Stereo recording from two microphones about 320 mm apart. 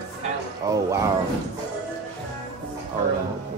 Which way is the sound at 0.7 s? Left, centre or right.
Centre.